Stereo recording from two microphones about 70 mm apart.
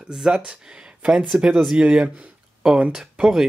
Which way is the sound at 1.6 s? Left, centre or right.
Centre.